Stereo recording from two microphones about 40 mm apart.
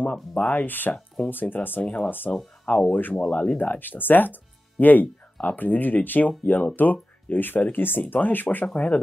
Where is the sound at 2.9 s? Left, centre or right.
Left.